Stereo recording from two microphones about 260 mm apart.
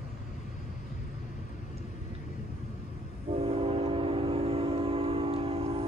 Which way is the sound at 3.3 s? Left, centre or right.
Right.